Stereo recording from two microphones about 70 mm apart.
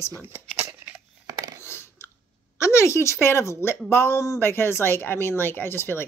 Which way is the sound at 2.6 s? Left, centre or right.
Left.